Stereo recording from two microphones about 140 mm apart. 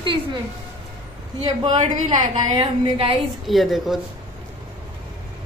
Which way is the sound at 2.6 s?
40° right (ahead or behind).